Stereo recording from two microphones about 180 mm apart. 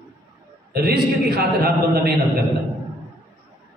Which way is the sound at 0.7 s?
60° right (ahead or behind).